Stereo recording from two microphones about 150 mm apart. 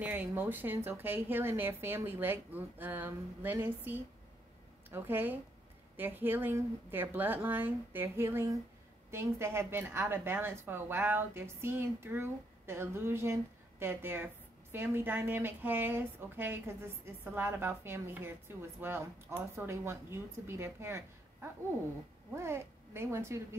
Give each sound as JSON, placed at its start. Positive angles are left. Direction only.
{"t": 0.0, "sound": "a woman's voice", "side_deg": -10}